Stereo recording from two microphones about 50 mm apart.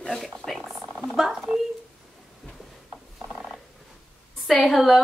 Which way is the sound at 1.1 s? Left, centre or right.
Centre.